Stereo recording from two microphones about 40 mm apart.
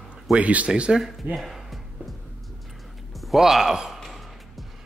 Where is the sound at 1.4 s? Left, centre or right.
Centre.